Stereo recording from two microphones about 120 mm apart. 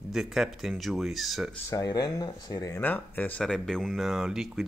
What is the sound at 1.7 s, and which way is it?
Speech, 30° left (ahead or behind).